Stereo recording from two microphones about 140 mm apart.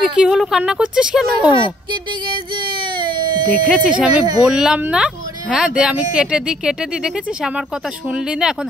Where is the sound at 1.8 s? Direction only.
35° right (ahead or behind).